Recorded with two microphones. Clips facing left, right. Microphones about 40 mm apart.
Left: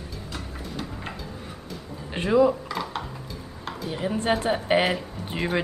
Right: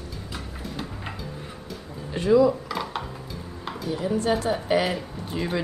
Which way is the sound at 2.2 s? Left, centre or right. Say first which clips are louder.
Right 1 dB; left.